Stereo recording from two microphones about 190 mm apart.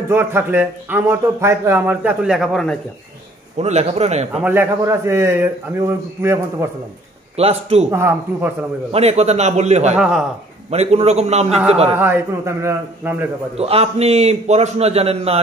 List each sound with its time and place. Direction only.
0.1 s speech: 10° right (ahead or behind)
3.5 s a man's voice: 35° right (ahead or behind)
4.3 s speech: 5° right (ahead or behind)
7.3 s a man's voice: 30° right (ahead or behind)
7.9 s speech: 10° right (ahead or behind)
8.9 s a man's voice: 35° right (ahead or behind)
9.9 s a man's voice: 5° right (ahead or behind)
10.7 s a man's voice: 35° right (ahead or behind)
12.0 s speech: 10° right (ahead or behind)
13.6 s a man's voice: 30° right (ahead or behind)